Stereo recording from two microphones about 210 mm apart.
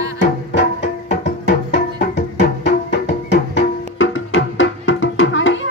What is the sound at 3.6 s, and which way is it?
Music, 65° left (ahead or behind).